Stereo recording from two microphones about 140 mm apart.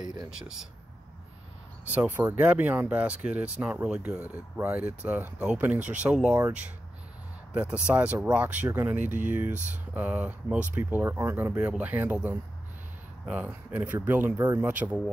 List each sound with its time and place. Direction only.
0.3 s speech: 5° right (ahead or behind)
1.9 s speech: 15° right (ahead or behind)
6.3 s speech: 15° right (ahead or behind)